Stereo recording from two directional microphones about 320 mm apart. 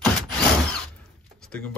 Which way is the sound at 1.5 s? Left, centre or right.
Centre.